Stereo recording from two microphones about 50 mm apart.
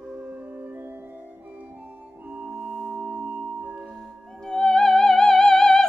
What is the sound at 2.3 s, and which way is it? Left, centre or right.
Music, right.